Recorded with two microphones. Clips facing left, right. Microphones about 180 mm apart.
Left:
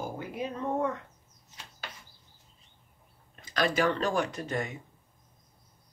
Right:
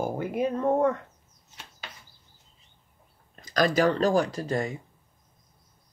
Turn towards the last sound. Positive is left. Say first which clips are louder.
# right 4 dB
turn(degrees=-35)  # may be behind; listen again after turning